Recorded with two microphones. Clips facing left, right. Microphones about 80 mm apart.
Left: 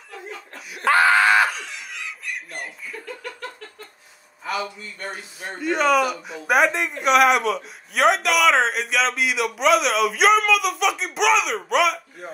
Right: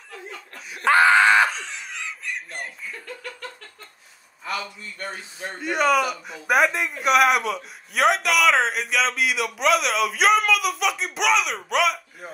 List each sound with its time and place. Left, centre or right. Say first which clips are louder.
0.8 s screaming: right 1 dB; right
1.5 s a sound: even; right
2.5 s chuckle: left 1 dB; centre
4.5 s speech: left 3 dB; centre